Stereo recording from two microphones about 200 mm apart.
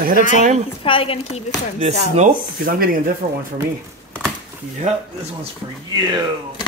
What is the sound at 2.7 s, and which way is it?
Speech, 45° right (ahead or behind).